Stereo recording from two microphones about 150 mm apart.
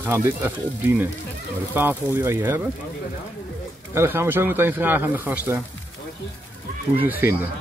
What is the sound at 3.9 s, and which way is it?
Speech, 15° right (ahead or behind).